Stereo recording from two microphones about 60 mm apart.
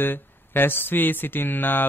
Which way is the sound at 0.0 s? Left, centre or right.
Left.